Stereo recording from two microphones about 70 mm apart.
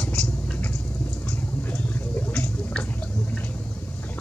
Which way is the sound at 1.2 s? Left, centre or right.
Left.